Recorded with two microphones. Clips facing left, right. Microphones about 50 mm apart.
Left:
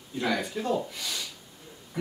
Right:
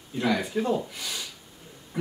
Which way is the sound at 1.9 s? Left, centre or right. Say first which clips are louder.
Right 1 dB; centre.